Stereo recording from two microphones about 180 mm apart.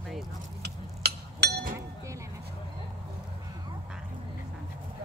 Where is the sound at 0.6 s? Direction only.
65° right (ahead or behind).